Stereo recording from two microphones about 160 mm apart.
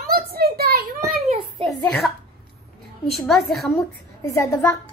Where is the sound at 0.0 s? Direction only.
70° right (ahead or behind).